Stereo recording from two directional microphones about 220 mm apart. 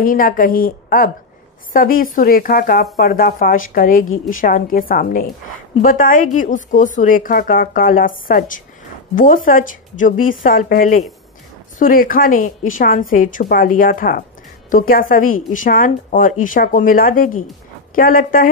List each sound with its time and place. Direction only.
0.0 s a woman's voice: 40° left (ahead or behind)